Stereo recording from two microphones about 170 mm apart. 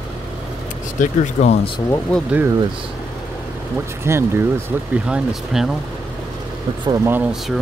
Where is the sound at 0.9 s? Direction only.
45° left (ahead or behind).